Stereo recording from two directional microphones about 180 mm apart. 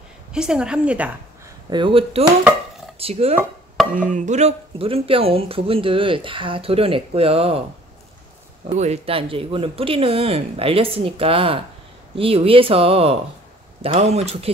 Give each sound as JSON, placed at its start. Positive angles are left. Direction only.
{"t": 0.3, "sound": "a woman's voice", "side_deg": -5}
{"t": 1.7, "sound": "speech", "side_deg": -25}
{"t": 8.6, "sound": "speech", "side_deg": -40}